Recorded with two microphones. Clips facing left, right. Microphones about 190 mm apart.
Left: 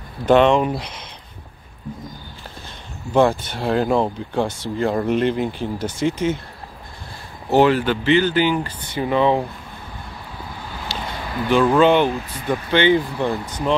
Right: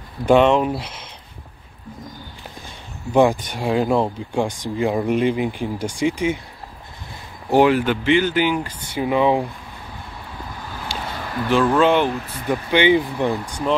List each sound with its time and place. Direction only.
0.2 s speech: 5° right (ahead or behind)
3.1 s speech: 15° right (ahead or behind)
7.5 s speech: 10° right (ahead or behind)
10.9 s a sound: 10° right (ahead or behind)
11.4 s speech: centre (ahead or behind)
12.7 s speech: 15° right (ahead or behind)